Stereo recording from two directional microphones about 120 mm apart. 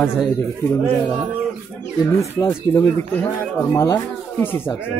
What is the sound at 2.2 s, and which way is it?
A man's voice, 25° left (ahead or behind).